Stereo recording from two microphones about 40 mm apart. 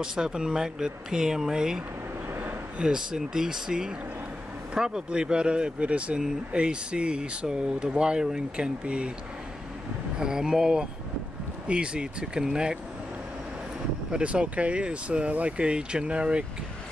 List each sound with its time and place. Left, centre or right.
0.0 s speech: centre
2.8 s speech: centre
8.6 s speech: right
10.1 s speech: centre
14.1 s speech: right